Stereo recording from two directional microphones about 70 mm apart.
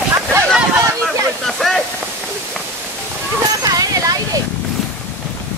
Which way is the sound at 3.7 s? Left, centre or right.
Right.